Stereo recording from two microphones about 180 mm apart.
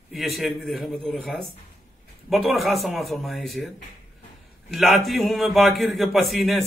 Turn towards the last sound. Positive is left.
turn(degrees=0)  # may be behind; listen again after turning